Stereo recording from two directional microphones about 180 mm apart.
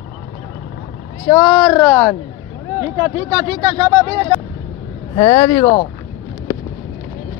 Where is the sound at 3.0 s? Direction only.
25° right (ahead or behind).